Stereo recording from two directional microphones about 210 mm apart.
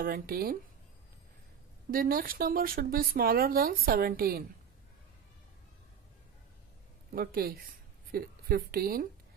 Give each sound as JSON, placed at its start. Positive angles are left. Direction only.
{"t": 0.0, "sound": "speech", "side_deg": -45}
{"t": 1.9, "sound": "speech", "side_deg": -45}
{"t": 7.1, "sound": "a woman's voice", "side_deg": -45}